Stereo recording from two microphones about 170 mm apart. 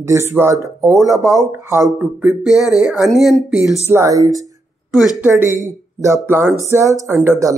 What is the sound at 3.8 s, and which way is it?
Speech, 15° right (ahead or behind).